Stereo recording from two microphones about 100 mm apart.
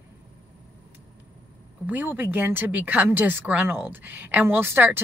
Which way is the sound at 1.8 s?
20° right (ahead or behind).